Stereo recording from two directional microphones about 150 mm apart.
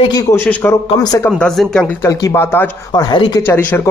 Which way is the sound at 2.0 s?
20° left (ahead or behind).